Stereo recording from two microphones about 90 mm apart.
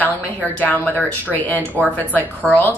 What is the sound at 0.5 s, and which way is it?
Speech, 20° left (ahead or behind).